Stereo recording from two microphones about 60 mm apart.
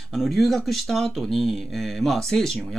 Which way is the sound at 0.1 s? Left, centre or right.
Centre.